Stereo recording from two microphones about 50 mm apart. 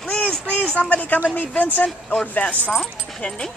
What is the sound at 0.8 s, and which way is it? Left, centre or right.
A woman's voice, left.